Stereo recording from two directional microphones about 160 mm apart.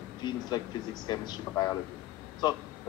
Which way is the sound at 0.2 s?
25° left (ahead or behind).